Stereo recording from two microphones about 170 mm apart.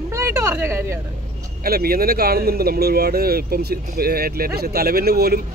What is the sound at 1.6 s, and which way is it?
Speech, 60° right (ahead or behind).